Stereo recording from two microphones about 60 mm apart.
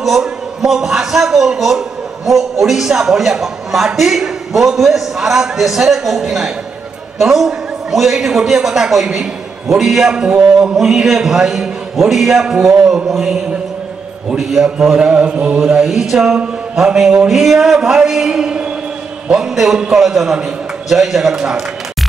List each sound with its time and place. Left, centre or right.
0.0 s a man's voice: centre